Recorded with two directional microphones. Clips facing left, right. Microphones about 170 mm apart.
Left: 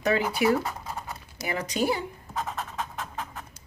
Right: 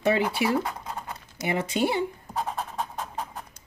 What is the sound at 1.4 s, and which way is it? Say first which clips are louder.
Speech: right 1 dB; 25° right (ahead or behind).